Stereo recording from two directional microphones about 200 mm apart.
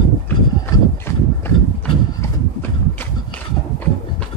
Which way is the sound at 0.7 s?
10° left (ahead or behind).